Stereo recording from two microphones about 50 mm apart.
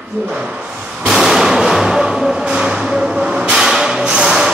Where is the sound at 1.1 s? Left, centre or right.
Centre.